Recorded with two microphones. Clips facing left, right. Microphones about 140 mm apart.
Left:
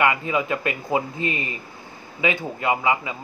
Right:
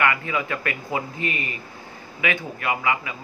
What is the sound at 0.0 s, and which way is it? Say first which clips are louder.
Speech: left 2 dB; 20° left (ahead or behind).